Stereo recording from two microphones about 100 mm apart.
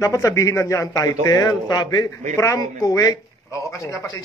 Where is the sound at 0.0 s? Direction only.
30° left (ahead or behind).